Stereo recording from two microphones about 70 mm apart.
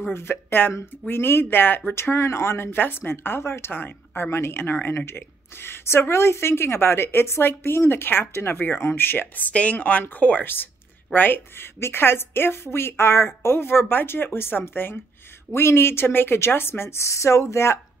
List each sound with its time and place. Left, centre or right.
0.1 s a woman's voice: left
2.1 s a woman's voice: left